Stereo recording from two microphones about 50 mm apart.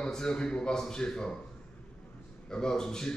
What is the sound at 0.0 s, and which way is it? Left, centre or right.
A man's voice, centre.